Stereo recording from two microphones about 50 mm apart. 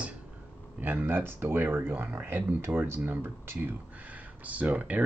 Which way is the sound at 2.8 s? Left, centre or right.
Right.